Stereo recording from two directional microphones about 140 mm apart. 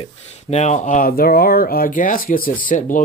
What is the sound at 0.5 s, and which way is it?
Speech, 55° left (ahead or behind).